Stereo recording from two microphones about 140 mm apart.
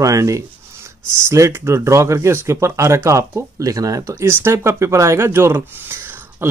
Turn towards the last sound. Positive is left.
turn(degrees=-15)  # may be behind; listen again after turning